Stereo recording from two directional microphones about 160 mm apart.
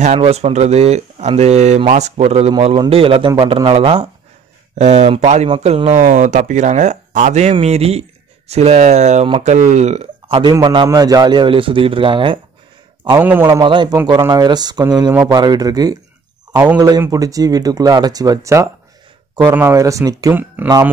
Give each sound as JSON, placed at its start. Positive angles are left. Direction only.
{"t": 0.0, "sound": "a man's voice", "side_deg": -40}
{"t": 10.4, "sound": "a man's voice", "side_deg": -25}
{"t": 13.2, "sound": "a man's voice", "side_deg": -15}
{"t": 13.7, "sound": "speech", "side_deg": -30}
{"t": 16.5, "sound": "a man's voice", "side_deg": -10}